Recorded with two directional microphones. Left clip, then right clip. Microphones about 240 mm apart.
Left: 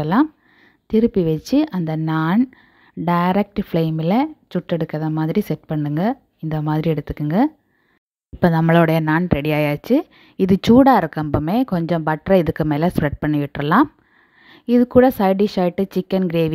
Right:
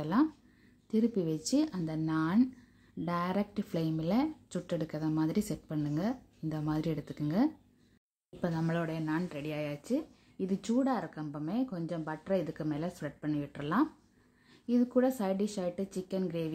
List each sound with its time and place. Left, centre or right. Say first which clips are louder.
0.0 s speech: left 12 dB; left